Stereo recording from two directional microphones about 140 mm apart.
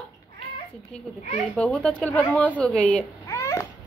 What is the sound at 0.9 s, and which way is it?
A woman's voice, 5° left (ahead or behind).